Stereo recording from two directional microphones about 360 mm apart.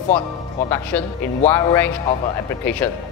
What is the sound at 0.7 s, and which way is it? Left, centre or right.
Speech, centre.